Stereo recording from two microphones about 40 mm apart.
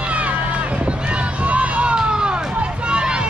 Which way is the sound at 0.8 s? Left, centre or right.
Right.